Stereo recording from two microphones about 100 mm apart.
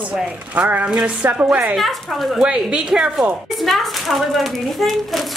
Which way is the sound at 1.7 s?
Centre (ahead or behind).